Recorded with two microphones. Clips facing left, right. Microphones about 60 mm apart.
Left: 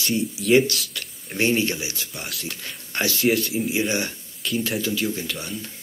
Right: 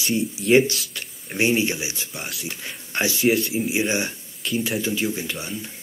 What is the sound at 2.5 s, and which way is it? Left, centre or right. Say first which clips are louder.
Speech: right 1 dB; centre.